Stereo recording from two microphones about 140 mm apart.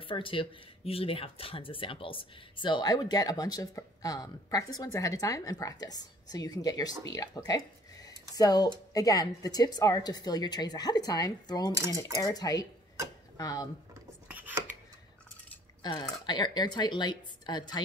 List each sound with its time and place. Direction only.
0.0 s speech: 40° left (ahead or behind)
14.2 s a sound: 10° right (ahead or behind)
15.8 s speech: 30° left (ahead or behind)